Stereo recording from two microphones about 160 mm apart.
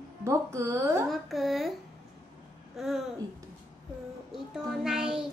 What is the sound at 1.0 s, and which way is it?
Child singing, centre (ahead or behind).